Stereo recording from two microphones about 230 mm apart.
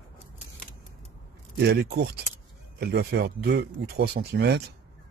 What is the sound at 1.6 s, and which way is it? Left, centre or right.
Speech, right.